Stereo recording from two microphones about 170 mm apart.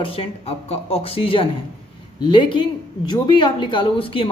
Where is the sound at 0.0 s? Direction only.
35° left (ahead or behind).